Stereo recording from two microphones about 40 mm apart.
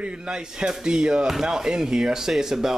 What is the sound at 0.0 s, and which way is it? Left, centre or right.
Speech, right.